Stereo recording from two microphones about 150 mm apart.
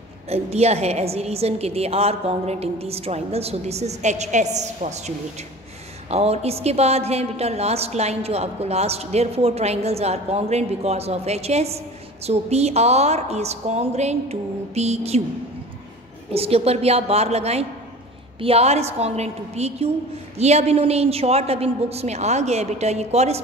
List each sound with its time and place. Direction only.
0.3 s a woman's voice: 45° right (ahead or behind)
16.3 s a woman's voice: 40° right (ahead or behind)